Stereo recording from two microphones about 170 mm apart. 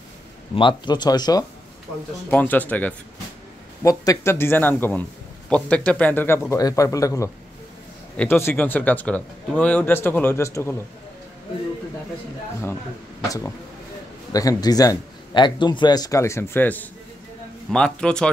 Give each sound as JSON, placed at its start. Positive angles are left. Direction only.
{"t": 0.6, "sound": "speech", "side_deg": 30}
{"t": 2.2, "sound": "speech", "side_deg": 10}
{"t": 3.8, "sound": "speech", "side_deg": 20}
{"t": 14.3, "sound": "speech", "side_deg": 20}